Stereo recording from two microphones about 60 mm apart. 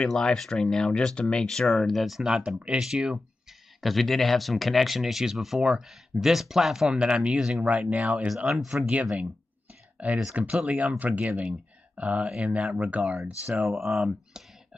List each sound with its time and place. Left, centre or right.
0.1 s speech: centre
3.8 s speech: centre
7.6 s speech: centre
8.5 s speech: centre
10.0 s speech: right
13.0 s speech: centre